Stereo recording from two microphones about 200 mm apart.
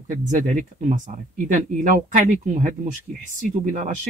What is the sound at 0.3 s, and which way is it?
Speech, 40° right (ahead or behind).